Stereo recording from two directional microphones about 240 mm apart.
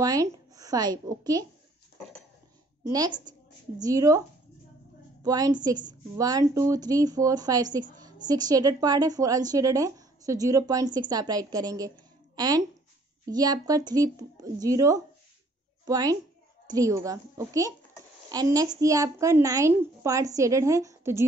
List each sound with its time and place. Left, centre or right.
0.0 s speech: centre
2.8 s a woman's voice: centre
5.2 s a woman's voice: centre